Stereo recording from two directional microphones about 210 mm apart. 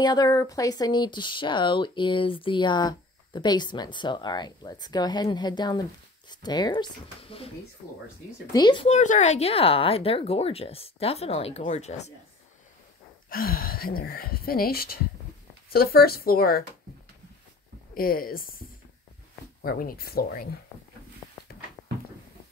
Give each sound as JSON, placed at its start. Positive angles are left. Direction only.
{"t": 0.0, "sound": "speech", "side_deg": 20}
{"t": 8.5, "sound": "speech", "side_deg": 20}
{"t": 13.3, "sound": "speech", "side_deg": 45}
{"t": 17.9, "sound": "speech", "side_deg": 45}
{"t": 19.6, "sound": "speech", "side_deg": 45}
{"t": 21.2, "sound": "a sound", "side_deg": 5}